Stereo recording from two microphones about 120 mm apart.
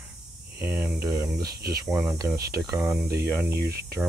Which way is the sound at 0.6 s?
10° right (ahead or behind).